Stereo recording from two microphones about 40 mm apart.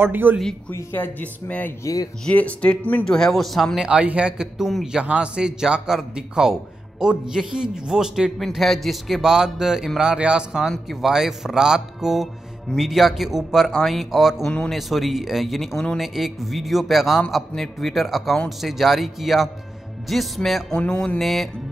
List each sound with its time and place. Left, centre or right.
0.0 s speech: right
0.7 s speech: left
1.2 s speech: left
3.1 s speech: centre
3.7 s a man's voice: right
4.3 s a man's voice: centre
5.0 s a man's voice: right
8.4 s speech: centre
9.2 s a man's voice: centre
10.9 s a man's voice: centre
17.6 s a man's voice: centre
17.9 s speech: centre
20.7 s mantra: left
21.2 s speech: centre